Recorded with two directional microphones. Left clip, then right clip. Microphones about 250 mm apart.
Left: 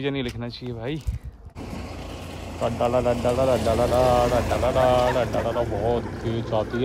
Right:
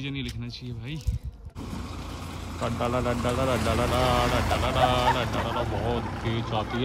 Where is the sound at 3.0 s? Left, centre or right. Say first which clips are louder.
Left 6 dB; centre.